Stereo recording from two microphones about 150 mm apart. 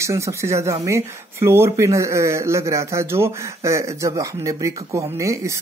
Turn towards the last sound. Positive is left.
turn(degrees=-20)  # may be behind; listen again after turning